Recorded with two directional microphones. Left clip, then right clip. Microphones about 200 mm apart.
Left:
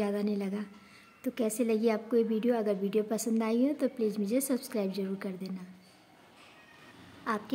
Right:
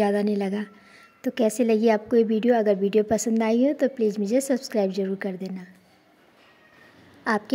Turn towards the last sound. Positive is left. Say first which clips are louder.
# right 9 dB
turn(degrees=-25)  # may be behind; listen again after turning